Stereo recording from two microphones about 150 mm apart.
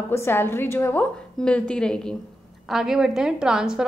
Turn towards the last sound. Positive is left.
turn(degrees=-5)  # may be behind; listen again after turning